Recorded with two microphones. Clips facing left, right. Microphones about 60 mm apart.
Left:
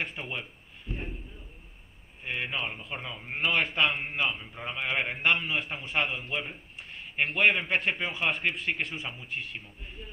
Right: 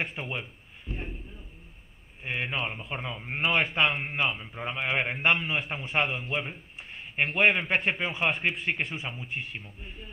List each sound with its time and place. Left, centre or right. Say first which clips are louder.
0.0 s a man's voice: right 2 dB; centre
2.2 s a man's voice: right 2 dB; centre
6.8 s a sound: right 1 dB; centre
7.2 s a man's voice: right 1 dB; centre